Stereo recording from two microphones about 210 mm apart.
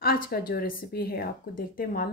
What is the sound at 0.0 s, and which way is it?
A woman's voice, 45° left (ahead or behind).